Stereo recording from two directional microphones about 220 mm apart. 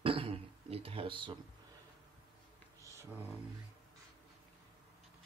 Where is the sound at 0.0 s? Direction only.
25° right (ahead or behind).